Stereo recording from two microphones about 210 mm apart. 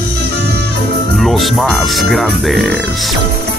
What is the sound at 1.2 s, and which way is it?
Music, centre (ahead or behind).